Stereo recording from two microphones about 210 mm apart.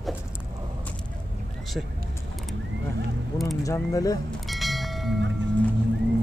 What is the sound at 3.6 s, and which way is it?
Speech, 15° left (ahead or behind).